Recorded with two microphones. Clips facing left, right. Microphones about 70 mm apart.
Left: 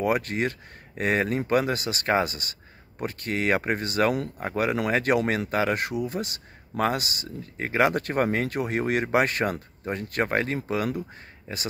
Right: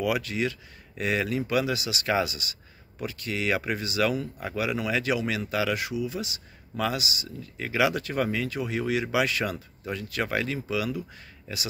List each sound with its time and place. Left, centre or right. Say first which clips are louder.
0.0 s speech: left 2 dB; left